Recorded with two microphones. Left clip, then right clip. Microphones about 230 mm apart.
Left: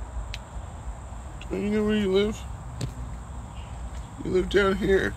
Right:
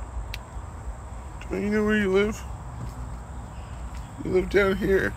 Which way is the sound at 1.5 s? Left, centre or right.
Centre.